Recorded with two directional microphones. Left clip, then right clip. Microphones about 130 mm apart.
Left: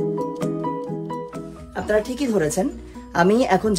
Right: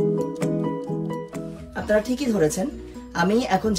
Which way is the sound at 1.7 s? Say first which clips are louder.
Left 1 dB; 60° left (ahead or behind).